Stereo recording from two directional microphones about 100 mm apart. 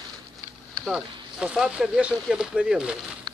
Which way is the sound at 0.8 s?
5° right (ahead or behind).